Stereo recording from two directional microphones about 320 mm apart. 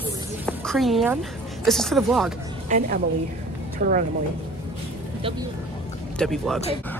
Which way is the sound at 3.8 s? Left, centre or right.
Right.